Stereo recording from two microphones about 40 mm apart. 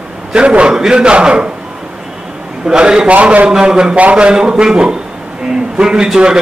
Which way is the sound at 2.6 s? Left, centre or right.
Right.